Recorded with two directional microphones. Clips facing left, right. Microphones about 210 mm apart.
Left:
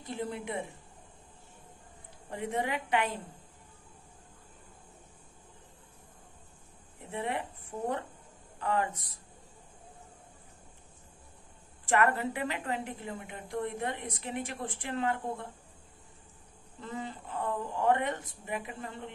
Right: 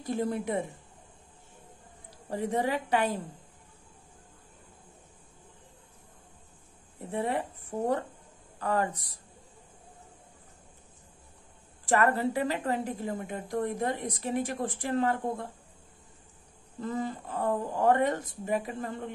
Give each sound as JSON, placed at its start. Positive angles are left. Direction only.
{"t": 0.0, "sound": "a woman's voice", "side_deg": -40}
{"t": 2.2, "sound": "a woman's voice", "side_deg": -35}
{"t": 7.0, "sound": "a woman's voice", "side_deg": -35}
{"t": 11.8, "sound": "a woman's voice", "side_deg": -35}
{"t": 16.8, "sound": "a woman's voice", "side_deg": -40}